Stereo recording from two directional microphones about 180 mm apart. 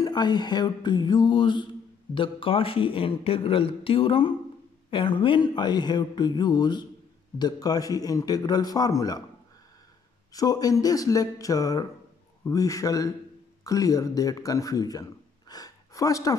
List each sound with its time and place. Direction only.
0.0 s mantra: 25° left (ahead or behind)
10.3 s mantra: 20° left (ahead or behind)
13.7 s a man's voice: 20° left (ahead or behind)